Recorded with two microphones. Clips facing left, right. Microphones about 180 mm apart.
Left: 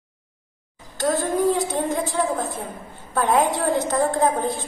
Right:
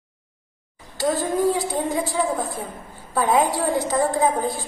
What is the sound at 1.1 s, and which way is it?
Speech, 20° left (ahead or behind).